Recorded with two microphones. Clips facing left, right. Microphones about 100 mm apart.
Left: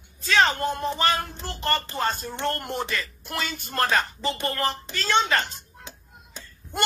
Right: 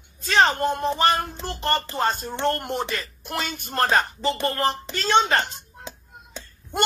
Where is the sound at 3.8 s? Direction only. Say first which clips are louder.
Right 3 dB; 40° right (ahead or behind).